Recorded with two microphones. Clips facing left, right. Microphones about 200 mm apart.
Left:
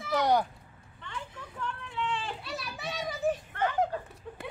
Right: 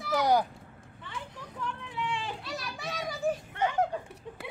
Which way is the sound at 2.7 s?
Centre (ahead or behind).